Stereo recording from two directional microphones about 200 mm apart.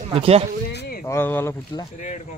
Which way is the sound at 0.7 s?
50° left (ahead or behind).